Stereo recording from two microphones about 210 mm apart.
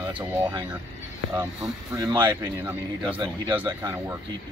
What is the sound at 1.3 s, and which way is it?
Speech, 15° right (ahead or behind).